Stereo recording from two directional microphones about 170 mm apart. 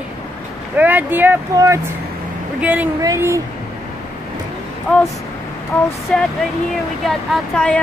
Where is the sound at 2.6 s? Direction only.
10° right (ahead or behind).